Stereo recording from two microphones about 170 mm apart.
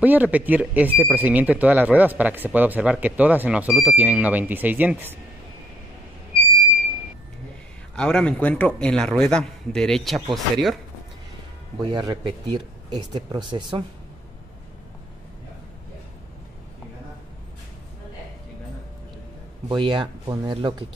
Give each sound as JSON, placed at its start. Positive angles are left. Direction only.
{"t": 0.0, "sound": "speech", "side_deg": -10}
{"t": 7.9, "sound": "a man's voice", "side_deg": 5}
{"t": 11.8, "sound": "speech", "side_deg": -25}
{"t": 19.7, "sound": "speech", "side_deg": -25}